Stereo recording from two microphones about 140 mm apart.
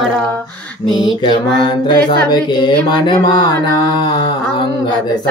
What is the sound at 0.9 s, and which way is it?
Mantra, 35° left (ahead or behind).